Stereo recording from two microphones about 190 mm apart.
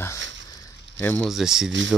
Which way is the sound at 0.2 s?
75° right (ahead or behind).